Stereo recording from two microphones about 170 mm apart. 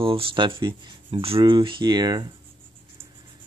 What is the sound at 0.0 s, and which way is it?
Speech, 30° right (ahead or behind).